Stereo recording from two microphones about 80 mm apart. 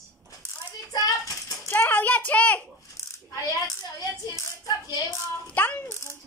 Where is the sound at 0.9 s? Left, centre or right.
Left.